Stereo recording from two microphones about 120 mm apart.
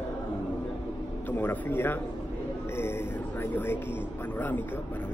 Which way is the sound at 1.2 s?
15° left (ahead or behind).